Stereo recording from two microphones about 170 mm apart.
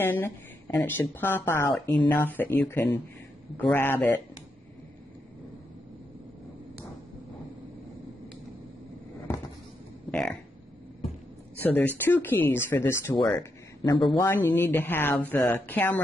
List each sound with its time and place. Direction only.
0.0 s speech: 15° left (ahead or behind)
10.1 s speech: 5° left (ahead or behind)
11.6 s speech: 10° left (ahead or behind)
13.8 s speech: 30° left (ahead or behind)
14.2 s speech: 15° left (ahead or behind)